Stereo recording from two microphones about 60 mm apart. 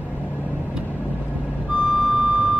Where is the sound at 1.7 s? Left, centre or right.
Centre.